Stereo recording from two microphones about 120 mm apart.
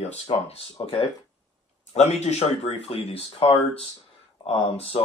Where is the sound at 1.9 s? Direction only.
70° left (ahead or behind).